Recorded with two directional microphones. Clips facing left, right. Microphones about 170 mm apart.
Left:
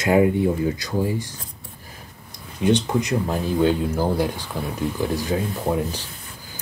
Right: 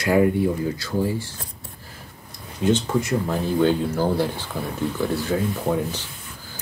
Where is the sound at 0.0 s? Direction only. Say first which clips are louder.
Left 1 dB; 20° left (ahead or behind).